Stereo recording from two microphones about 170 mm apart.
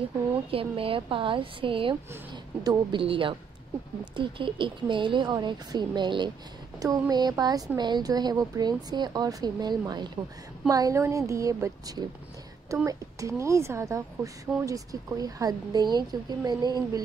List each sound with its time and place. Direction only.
0.5 s a woman's voice: 35° right (ahead or behind)